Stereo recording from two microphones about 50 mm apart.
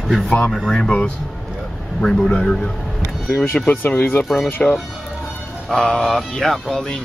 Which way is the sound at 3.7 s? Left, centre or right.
Left.